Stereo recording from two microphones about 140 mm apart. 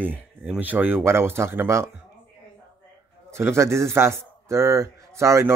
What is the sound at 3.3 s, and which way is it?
A man's voice, 20° right (ahead or behind).